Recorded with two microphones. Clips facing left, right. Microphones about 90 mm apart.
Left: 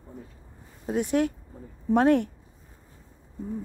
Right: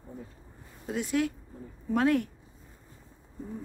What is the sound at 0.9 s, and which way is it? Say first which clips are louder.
Speech: left 4 dB; 45° left (ahead or behind).